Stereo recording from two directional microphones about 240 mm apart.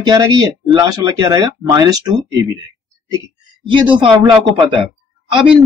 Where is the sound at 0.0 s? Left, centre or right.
Centre.